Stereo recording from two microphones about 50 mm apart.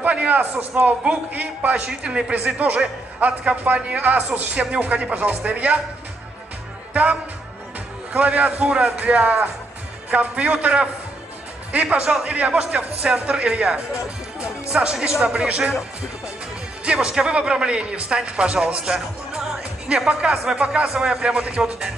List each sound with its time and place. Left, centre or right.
0.0 s a sound: right
0.8 s a man's voice: right
6.9 s music: right
8.1 s a man's voice: right
16.8 s a man's voice: right